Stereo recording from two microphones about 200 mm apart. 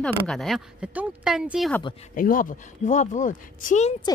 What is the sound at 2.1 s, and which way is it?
Speech, 45° left (ahead or behind).